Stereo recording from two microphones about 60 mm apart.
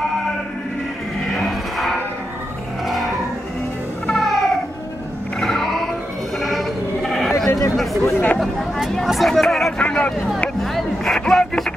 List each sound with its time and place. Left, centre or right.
1.3 s music: centre
4.1 s music: centre
6.3 s sheep: centre
7.7 s chatter: centre
8.0 s chatter: left
8.4 s vehicle: centre
9.8 s a sound: centre
10.6 s a sound: centre